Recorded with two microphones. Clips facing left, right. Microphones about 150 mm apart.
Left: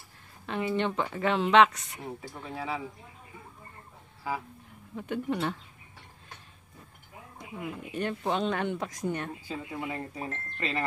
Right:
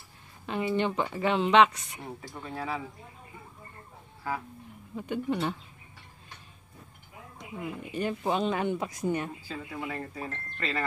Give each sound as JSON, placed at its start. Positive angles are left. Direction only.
{"t": 0.5, "sound": "speech", "side_deg": 0}
{"t": 4.9, "sound": "speech", "side_deg": 0}
{"t": 7.5, "sound": "speech", "side_deg": 0}
{"t": 9.8, "sound": "speech", "side_deg": 15}